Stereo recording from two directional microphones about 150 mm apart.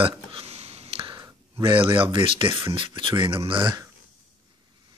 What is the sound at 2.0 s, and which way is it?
Speech, 35° right (ahead or behind).